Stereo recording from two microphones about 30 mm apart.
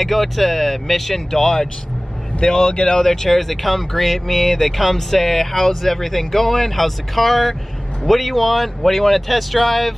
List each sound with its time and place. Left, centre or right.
0.0 s speech: centre
1.3 s speech: centre
3.0 s speech: centre